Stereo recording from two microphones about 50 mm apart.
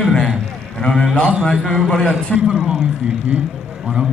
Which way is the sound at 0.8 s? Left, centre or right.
Centre.